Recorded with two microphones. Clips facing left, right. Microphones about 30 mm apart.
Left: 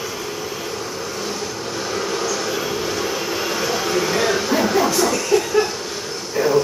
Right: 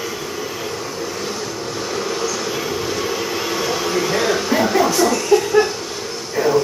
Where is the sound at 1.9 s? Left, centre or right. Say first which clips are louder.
Even; centre.